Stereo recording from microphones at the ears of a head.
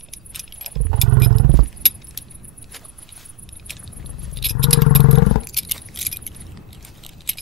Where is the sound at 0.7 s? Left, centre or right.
Right.